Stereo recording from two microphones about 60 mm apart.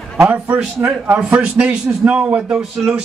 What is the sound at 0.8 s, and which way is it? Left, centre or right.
Speech, right.